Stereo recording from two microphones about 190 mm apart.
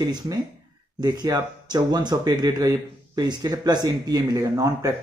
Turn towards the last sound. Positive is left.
turn(degrees=-20)  # may be behind; listen again after turning